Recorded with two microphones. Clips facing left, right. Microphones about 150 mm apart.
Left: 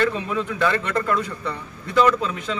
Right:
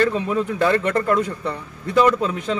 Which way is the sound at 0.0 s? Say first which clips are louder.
Right 3 dB; 40° right (ahead or behind).